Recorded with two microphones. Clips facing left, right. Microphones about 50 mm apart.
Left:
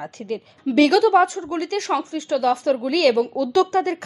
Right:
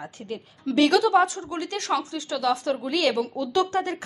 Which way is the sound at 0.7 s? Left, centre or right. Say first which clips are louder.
Left 4 dB; left.